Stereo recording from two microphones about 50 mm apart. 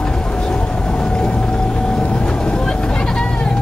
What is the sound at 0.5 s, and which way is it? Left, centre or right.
Vehicle, centre.